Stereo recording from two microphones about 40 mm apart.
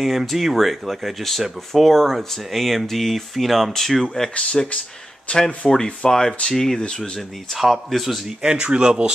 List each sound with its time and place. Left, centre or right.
0.0 s speech: centre
4.4 s speech: left
5.7 s speech: centre
7.0 s speech: centre
8.5 s speech: right